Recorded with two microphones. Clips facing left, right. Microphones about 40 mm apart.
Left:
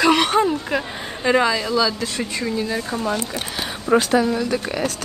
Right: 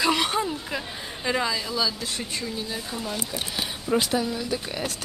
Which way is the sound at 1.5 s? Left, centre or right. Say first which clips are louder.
Left 7 dB; left.